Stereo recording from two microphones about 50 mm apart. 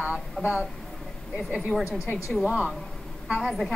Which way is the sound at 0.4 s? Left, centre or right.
Centre.